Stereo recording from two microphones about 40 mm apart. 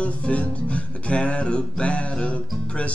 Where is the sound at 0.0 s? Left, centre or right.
Left.